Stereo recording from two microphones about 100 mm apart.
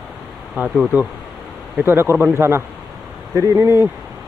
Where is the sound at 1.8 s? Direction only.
25° right (ahead or behind).